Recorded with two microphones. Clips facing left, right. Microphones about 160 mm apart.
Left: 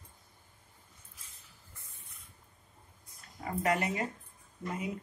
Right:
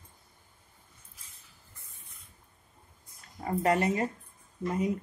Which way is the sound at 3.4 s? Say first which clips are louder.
Right 4 dB; 35° right (ahead or behind).